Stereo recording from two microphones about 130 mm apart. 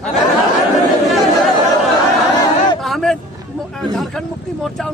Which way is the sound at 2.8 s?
Centre (ahead or behind).